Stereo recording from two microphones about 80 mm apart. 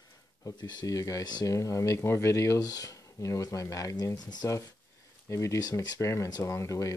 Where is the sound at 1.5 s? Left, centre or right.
Left.